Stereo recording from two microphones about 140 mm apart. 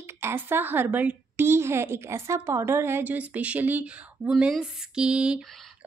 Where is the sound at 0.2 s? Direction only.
15° right (ahead or behind).